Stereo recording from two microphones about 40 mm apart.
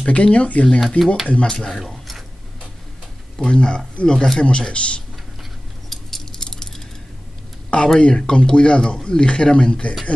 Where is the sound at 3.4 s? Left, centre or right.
Left.